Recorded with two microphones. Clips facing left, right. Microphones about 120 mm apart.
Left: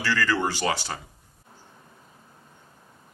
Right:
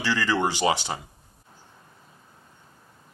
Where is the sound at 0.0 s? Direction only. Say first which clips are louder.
Right 1 dB; 20° right (ahead or behind).